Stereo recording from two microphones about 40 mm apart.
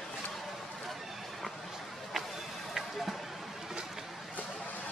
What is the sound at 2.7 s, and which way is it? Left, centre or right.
Basketball bounce, centre.